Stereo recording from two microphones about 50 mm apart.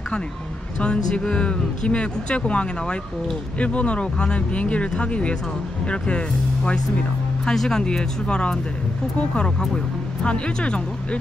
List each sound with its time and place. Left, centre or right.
0.7 s speech: left
7.5 s speech: centre